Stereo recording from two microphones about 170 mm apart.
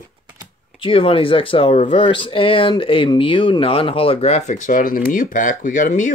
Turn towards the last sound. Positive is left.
turn(degrees=45)  # may be behind; listen again after turning